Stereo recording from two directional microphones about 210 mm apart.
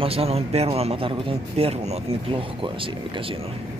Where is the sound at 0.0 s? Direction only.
30° right (ahead or behind).